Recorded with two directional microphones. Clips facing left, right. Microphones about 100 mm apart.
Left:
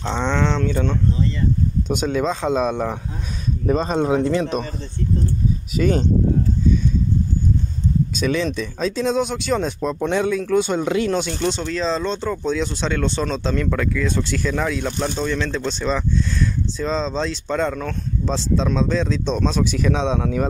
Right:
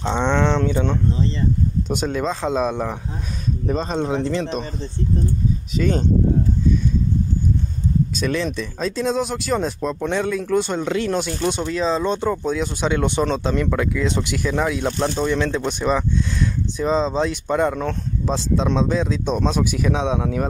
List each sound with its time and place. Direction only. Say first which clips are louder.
0.0 s speech: right 2 dB; 15° right (ahead or behind)
1.9 s speech: left 3 dB; centre (ahead or behind)
5.8 s speech: left 2 dB; 5° left (ahead or behind)
8.2 s speech: left 1 dB; centre (ahead or behind)